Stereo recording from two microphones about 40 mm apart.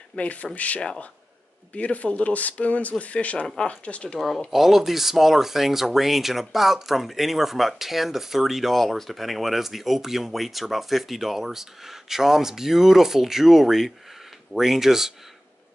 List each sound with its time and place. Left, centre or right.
0.1 s speech: left
4.5 s speech: centre